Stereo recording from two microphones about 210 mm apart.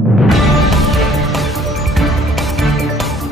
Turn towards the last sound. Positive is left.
turn(degrees=0)  # may be behind; listen again after turning